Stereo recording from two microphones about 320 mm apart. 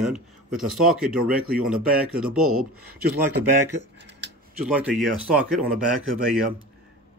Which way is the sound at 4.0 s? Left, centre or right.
Right.